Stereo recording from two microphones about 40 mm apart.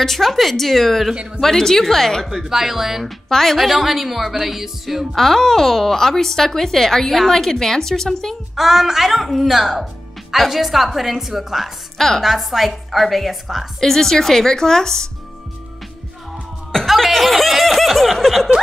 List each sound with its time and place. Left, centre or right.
0.0 s speech: centre
1.1 s speech: right
1.4 s speech: centre
2.4 s speech: centre
3.3 s speech: centre
8.5 s speech: centre
13.7 s speech: centre
16.8 s speech: centre